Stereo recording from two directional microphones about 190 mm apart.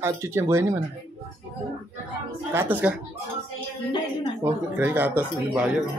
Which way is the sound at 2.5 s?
10° right (ahead or behind).